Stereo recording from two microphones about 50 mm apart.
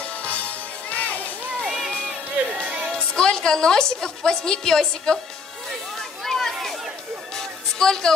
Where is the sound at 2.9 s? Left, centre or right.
Centre.